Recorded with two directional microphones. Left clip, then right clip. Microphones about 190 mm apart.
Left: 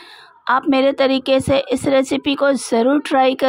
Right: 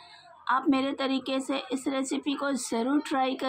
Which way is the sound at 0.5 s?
45° left (ahead or behind).